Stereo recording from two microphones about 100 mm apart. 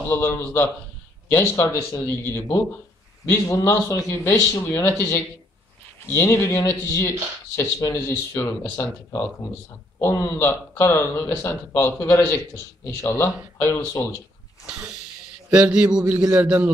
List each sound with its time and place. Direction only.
0.1 s a man's voice: 30° left (ahead or behind)
14.7 s a man's voice: 10° right (ahead or behind)